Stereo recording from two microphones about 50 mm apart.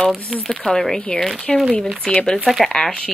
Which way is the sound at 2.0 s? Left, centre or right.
Left.